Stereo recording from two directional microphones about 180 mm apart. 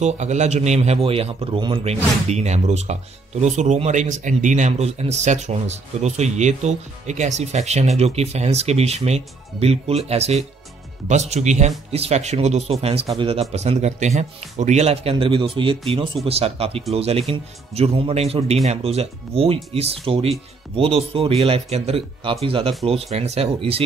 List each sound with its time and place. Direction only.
0.0 s speech: 40° right (ahead or behind)